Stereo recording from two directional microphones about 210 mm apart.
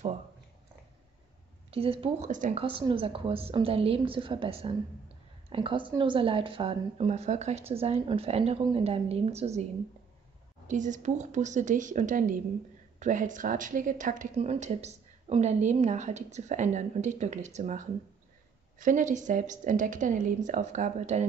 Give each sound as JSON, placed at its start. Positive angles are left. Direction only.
{"t": 1.7, "sound": "a woman's voice", "side_deg": -25}
{"t": 10.7, "sound": "speech", "side_deg": -35}